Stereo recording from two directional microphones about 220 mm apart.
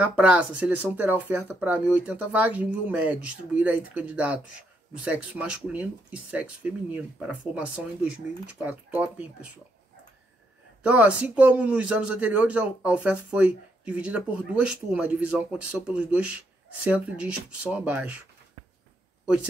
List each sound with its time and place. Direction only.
0.0 s speech: 5° right (ahead or behind)
10.8 s speech: 5° right (ahead or behind)